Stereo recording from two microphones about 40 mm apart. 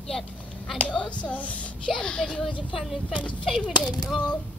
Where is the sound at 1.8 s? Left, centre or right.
Centre.